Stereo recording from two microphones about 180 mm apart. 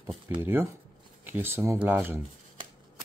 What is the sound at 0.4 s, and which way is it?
Speech, 10° right (ahead or behind).